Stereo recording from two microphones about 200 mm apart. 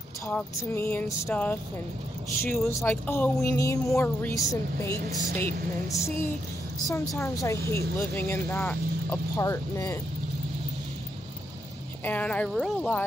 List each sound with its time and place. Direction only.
0.3 s speech: 10° left (ahead or behind)
12.0 s speech: 10° left (ahead or behind)